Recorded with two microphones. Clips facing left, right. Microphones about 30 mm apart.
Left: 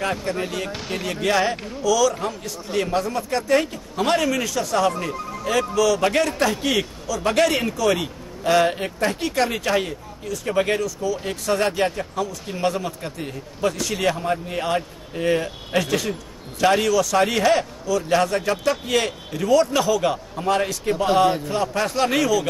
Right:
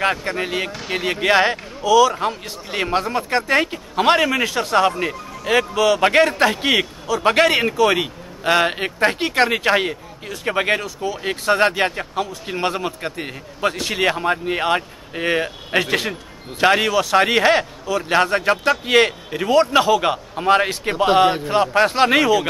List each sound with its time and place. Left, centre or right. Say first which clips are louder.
0.0 s a man's voice: right 4 dB; right